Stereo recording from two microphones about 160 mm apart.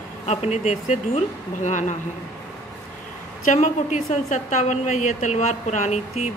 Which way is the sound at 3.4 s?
50° left (ahead or behind).